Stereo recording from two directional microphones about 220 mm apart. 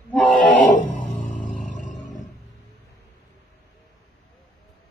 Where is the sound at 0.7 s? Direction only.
35° left (ahead or behind).